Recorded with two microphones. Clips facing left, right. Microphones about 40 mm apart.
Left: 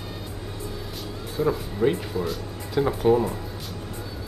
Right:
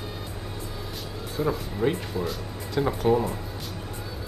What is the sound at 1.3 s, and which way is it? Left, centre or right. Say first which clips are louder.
Speech: left 3 dB; centre.